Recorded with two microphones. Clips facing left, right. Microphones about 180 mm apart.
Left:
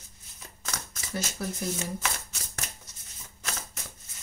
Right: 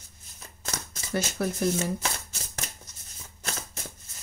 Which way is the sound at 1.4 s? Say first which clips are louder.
Right 6 dB; 60° right (ahead or behind).